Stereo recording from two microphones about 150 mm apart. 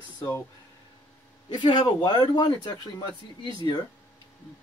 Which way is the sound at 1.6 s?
30° left (ahead or behind).